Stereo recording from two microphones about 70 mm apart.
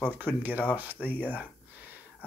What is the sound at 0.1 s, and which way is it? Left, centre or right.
Speech, right.